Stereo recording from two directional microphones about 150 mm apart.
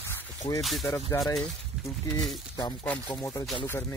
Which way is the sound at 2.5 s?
30° left (ahead or behind).